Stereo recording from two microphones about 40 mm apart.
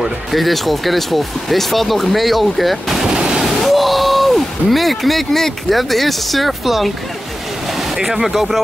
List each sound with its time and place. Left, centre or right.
0.3 s speech: centre
3.1 s a sound: centre
3.6 s speech: centre
8.0 s speech: centre